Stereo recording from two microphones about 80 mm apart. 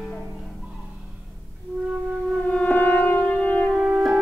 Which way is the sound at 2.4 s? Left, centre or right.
Centre.